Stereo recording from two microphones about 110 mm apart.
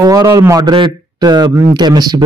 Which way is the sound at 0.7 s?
45° right (ahead or behind).